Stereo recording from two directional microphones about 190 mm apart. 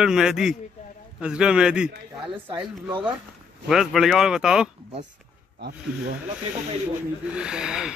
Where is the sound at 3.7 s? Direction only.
Centre (ahead or behind).